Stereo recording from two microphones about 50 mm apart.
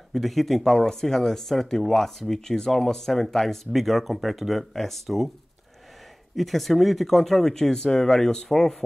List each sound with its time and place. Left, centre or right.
0.1 s speech: centre
6.3 s speech: centre